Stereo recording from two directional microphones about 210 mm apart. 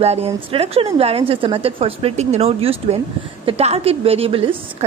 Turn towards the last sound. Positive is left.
turn(degrees=-25)  # may be behind; listen again after turning